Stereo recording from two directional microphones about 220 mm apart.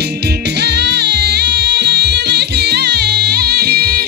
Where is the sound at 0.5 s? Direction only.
50° right (ahead or behind).